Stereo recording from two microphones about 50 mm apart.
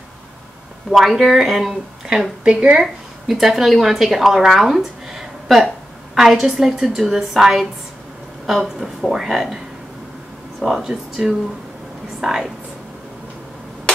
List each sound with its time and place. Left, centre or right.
0.9 s speech: centre
2.8 s a woman's voice: centre
10.6 s a woman's voice: centre